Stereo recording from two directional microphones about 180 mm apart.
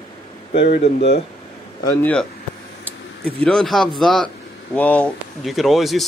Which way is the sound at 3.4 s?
Centre (ahead or behind).